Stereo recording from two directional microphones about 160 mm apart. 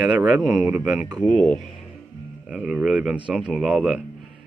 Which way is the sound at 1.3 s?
5° left (ahead or behind).